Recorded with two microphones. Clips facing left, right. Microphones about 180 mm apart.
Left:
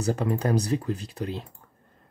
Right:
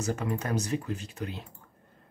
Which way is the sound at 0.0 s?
35° left (ahead or behind).